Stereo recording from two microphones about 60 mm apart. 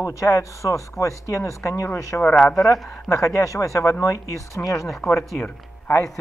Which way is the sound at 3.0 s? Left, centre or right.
Left.